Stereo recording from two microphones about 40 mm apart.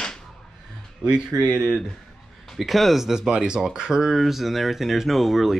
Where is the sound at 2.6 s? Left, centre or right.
Centre.